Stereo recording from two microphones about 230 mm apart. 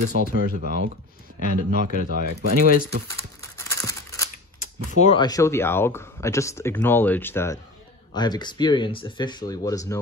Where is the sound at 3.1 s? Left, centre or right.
Centre.